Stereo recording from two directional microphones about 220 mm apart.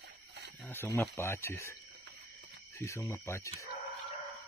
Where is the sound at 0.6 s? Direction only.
10° left (ahead or behind).